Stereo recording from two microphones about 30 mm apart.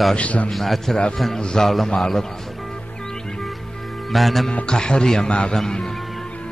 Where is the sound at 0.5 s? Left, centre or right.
Centre.